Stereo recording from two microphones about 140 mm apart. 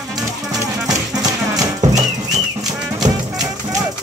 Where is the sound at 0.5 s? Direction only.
25° right (ahead or behind).